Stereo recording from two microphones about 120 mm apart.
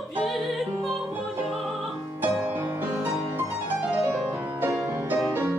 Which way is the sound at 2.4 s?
20° right (ahead or behind).